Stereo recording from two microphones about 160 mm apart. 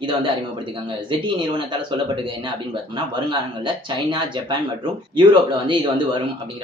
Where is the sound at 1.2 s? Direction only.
30° right (ahead or behind).